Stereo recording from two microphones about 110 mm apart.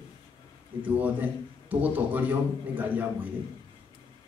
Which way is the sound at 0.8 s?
15° right (ahead or behind).